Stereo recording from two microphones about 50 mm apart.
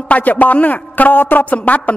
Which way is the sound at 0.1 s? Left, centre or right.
Left.